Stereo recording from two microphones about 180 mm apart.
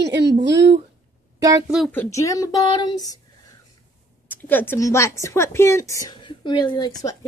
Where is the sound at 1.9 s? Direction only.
15° left (ahead or behind).